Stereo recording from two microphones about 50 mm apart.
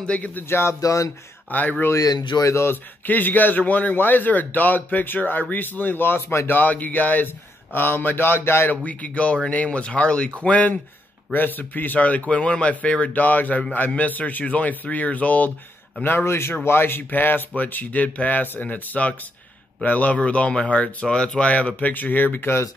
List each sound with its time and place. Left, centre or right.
0.0 s speech: left
0.3 s speech: left
1.5 s a man's voice: left
2.4 s speech: left
2.7 s a man's voice: left
6.5 s a man's voice: left
7.7 s speech: left
8.8 s a man's voice: left
16.0 s a man's voice: left